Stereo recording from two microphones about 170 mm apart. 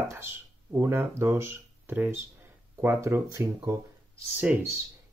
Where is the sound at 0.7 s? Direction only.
15° right (ahead or behind).